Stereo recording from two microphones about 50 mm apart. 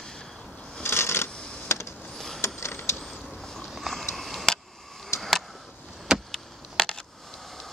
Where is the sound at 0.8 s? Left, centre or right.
Left.